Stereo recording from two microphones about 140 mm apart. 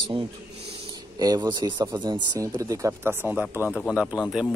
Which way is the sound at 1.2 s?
30° right (ahead or behind).